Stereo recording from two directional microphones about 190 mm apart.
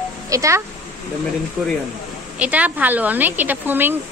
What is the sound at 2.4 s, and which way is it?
A woman's voice, 10° right (ahead or behind).